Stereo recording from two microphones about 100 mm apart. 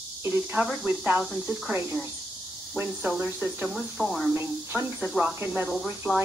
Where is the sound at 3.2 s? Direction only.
15° right (ahead or behind).